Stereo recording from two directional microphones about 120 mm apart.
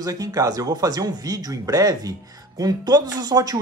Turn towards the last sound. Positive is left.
turn(degrees=-30)  # may be behind; listen again after turning